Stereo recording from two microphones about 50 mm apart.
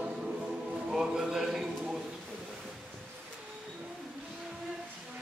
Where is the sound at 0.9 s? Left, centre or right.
Centre.